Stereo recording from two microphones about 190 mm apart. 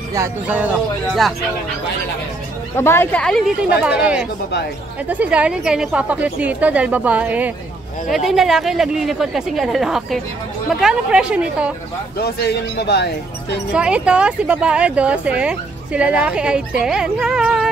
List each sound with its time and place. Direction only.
0.1 s speech: 10° right (ahead or behind)
2.7 s speech: 15° left (ahead or behind); by 11.7 s 5° right (ahead or behind)
12.2 s speech: 60° left (ahead or behind)
13.7 s speech: 5° right (ahead or behind)